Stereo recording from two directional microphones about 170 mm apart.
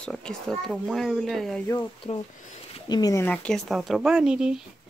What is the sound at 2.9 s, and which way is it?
Speech, 20° left (ahead or behind).